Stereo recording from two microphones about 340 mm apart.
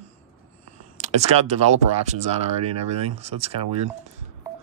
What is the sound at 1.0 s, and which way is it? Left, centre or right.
Speech, centre.